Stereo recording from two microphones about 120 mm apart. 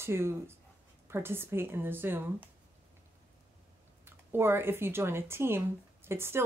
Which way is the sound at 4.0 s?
20° right (ahead or behind).